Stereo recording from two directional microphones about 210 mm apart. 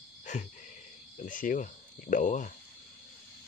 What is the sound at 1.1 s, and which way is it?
Speech, 40° left (ahead or behind).